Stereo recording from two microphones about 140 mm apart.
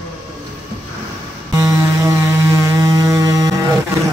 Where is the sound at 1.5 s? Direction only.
20° right (ahead or behind).